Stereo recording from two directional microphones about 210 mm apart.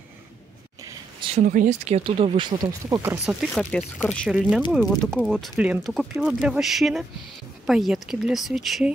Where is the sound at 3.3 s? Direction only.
Centre (ahead or behind).